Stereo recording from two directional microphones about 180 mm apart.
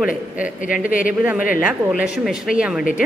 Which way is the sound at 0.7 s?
50° left (ahead or behind).